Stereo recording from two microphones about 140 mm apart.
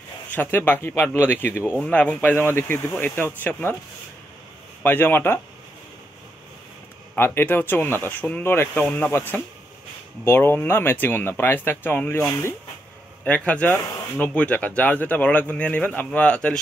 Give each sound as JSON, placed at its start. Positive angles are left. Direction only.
{"t": 0.3, "sound": "speech", "side_deg": 15}
{"t": 4.8, "sound": "speech", "side_deg": 15}
{"t": 7.2, "sound": "speech", "side_deg": 15}
{"t": 13.2, "sound": "speech", "side_deg": 10}